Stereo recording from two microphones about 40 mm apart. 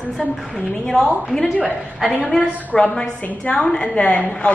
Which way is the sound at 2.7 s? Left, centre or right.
Centre.